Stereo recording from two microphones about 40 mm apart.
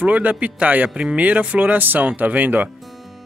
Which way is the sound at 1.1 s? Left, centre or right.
Right.